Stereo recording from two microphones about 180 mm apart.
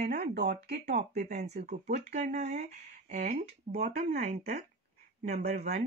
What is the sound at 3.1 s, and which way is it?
Speech, 55° right (ahead or behind).